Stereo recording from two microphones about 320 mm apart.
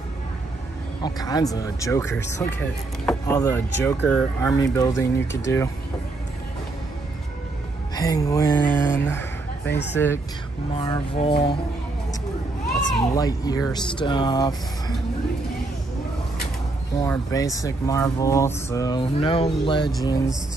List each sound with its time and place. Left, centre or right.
1.0 s speech: centre
7.9 s a woman's voice: centre
12.6 s speech: centre
17.0 s speech: centre